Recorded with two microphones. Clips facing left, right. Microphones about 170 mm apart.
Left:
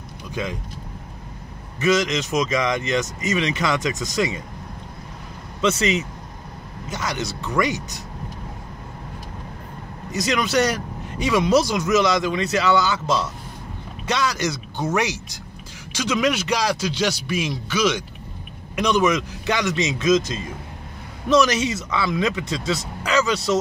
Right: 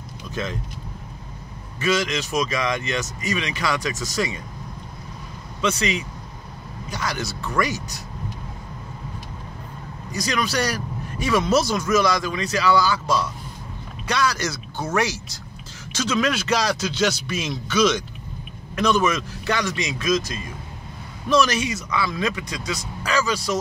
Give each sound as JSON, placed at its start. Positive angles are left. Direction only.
{"t": 0.3, "sound": "speech", "side_deg": 15}
{"t": 1.8, "sound": "speech", "side_deg": 20}
{"t": 5.6, "sound": "speech", "side_deg": 25}
{"t": 10.1, "sound": "speech", "side_deg": 20}